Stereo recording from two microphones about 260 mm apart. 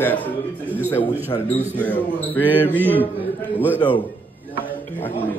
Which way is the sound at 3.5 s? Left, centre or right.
Centre.